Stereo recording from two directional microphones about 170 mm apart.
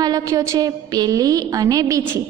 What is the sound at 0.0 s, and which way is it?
A woman's voice, 20° right (ahead or behind).